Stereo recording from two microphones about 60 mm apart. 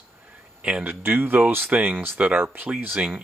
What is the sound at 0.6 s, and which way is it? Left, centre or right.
Speech, centre.